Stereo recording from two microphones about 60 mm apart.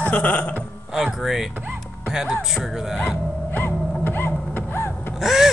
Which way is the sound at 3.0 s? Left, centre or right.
Left.